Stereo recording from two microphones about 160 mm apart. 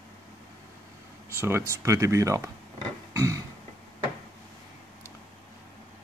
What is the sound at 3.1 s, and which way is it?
Music, 20° right (ahead or behind).